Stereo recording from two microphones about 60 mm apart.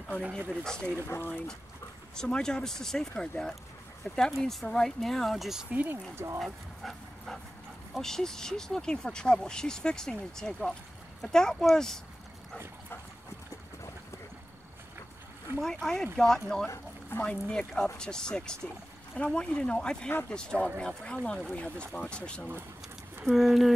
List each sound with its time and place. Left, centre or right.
0.5 s speech: centre
1.0 s speech: left
2.1 s speech: centre
5.7 s speech: right
6.1 s speech: right
6.4 s dog: centre
8.0 s speech: centre
15.6 s speech: centre
21.5 s speech: left
23.3 s speech: centre